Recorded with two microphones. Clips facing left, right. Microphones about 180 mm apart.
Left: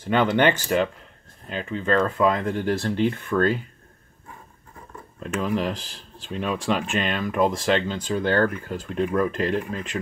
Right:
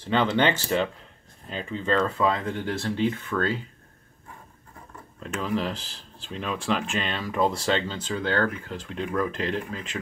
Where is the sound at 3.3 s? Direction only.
15° left (ahead or behind).